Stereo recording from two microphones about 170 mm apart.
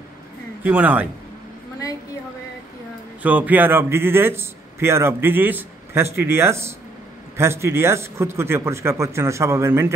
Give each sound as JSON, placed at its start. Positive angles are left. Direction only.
{"t": 0.7, "sound": "a man's voice", "side_deg": -10}
{"t": 3.2, "sound": "a man's voice", "side_deg": -10}